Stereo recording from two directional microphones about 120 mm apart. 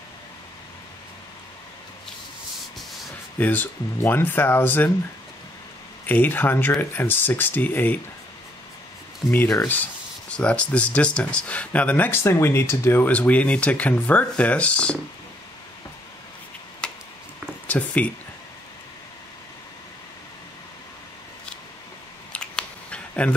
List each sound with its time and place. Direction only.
3.3 s speech: 15° left (ahead or behind)
6.0 s speech: 15° left (ahead or behind)
9.3 s speech: 15° left (ahead or behind)
16.8 s a sound: 10° left (ahead or behind)
17.6 s speech: 10° left (ahead or behind)
22.3 s scissors: 10° left (ahead or behind)